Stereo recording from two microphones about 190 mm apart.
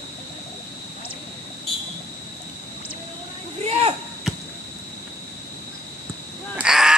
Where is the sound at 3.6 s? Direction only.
35° right (ahead or behind).